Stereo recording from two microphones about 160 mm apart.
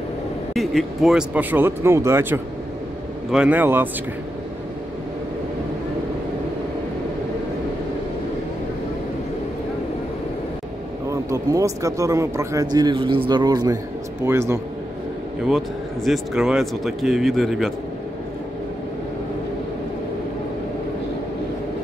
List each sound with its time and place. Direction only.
0.6 s speech: centre (ahead or behind)
11.1 s speech: 20° right (ahead or behind)
15.4 s speech: centre (ahead or behind)